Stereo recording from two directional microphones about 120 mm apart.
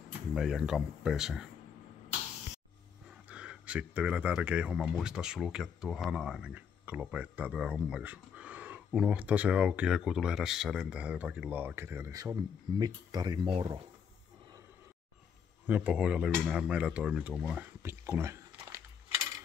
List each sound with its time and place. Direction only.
0.3 s speech: 5° right (ahead or behind)
3.3 s speech: 10° right (ahead or behind); by 13.5 s 35° right (ahead or behind)
15.6 s speech: 15° right (ahead or behind)
17.8 s a sound: 20° right (ahead or behind)